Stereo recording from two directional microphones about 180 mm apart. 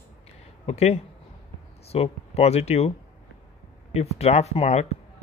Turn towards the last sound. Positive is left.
turn(degrees=35)  # may be behind; listen again after turning